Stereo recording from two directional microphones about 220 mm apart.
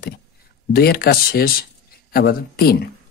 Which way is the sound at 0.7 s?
45° left (ahead or behind).